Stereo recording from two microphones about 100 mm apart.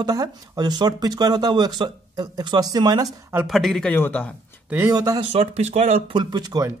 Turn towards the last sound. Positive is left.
turn(degrees=-40)  # may be behind; listen again after turning